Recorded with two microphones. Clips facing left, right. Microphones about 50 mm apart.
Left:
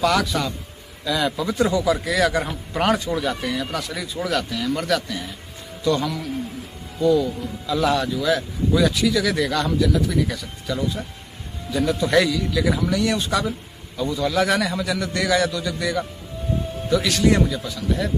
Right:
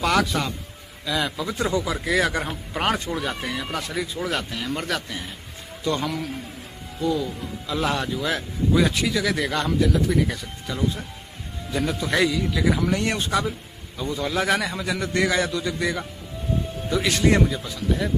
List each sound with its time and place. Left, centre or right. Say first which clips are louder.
0.0 s a man's voice: left 1 dB; right
1.0 s a man's voice: left 3 dB; centre
1.7 s a man's voice: left 3 dB; right
3.1 s a man's voice: left 4 dB; centre
4.5 s a man's voice: left 5 dB; right
7.0 s speech: left 6 dB; centre
7.6 s a man's voice: left 4 dB; right
13.3 s speech: left 1 dB; centre
14.0 s a man's voice: left 3 dB; right